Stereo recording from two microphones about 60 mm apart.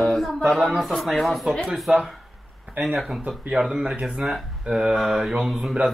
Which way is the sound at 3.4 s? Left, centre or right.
Centre.